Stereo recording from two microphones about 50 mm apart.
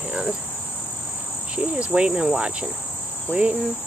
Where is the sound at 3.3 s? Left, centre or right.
Right.